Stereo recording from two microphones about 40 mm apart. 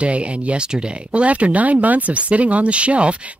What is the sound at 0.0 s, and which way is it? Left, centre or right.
Speech, right.